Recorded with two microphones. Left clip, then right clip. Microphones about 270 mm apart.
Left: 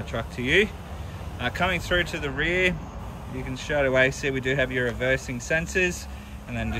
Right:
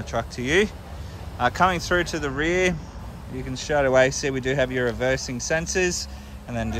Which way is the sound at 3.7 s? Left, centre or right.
Right.